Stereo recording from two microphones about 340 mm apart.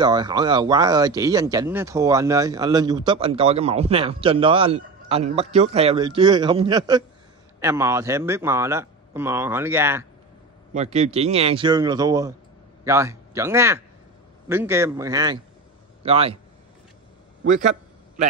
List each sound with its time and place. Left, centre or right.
0.0 s speech: centre
10.7 s a man's voice: centre
17.4 s a man's voice: right